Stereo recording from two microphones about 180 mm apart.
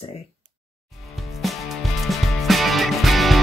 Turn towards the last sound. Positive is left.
turn(degrees=0)  # may be behind; listen again after turning